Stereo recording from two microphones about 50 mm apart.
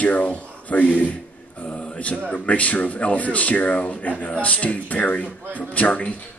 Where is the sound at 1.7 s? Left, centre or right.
Left.